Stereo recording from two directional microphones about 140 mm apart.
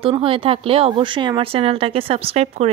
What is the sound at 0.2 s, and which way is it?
A woman's voice, 40° right (ahead or behind).